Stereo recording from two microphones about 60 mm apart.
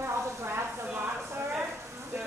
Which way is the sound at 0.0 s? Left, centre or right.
Right.